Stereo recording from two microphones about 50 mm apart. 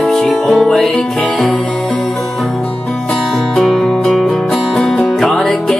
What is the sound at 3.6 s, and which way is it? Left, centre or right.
Music, centre.